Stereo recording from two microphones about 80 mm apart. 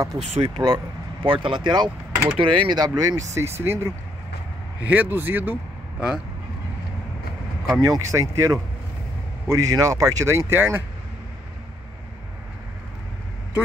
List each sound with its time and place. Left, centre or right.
0.0 s speech: right
1.2 s speech: right
2.3 s speech: right
3.0 s speech: right
3.3 s speech: right
4.8 s a man's voice: right
5.9 s speech: centre
7.8 s speech: right